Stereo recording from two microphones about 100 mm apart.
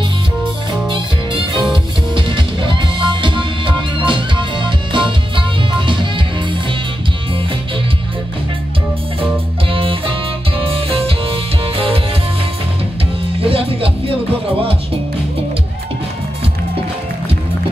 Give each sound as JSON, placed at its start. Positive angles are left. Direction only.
{"t": 0.8, "sound": "music", "side_deg": -55}
{"t": 9.7, "sound": "music", "side_deg": -65}
{"t": 13.4, "sound": "music", "side_deg": -70}